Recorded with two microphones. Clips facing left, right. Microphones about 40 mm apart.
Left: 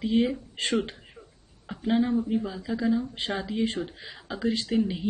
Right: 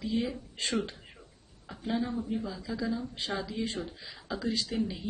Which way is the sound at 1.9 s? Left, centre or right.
Left.